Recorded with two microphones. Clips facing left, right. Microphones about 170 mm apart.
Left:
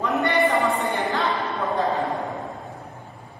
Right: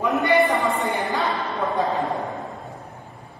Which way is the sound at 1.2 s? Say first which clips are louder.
Even; centre (ahead or behind).